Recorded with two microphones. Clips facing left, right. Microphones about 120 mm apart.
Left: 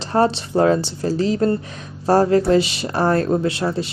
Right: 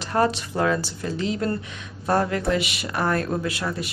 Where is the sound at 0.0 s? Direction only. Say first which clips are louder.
Left 4 dB; 30° left (ahead or behind).